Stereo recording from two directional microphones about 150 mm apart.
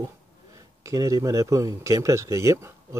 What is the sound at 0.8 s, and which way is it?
Speech, 20° right (ahead or behind).